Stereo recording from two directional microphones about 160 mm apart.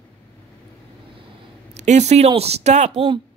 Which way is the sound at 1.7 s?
45° right (ahead or behind).